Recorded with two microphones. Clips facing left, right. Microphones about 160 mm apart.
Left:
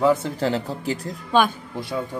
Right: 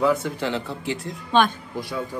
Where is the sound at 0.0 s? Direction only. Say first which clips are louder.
Left 2 dB; 30° left (ahead or behind).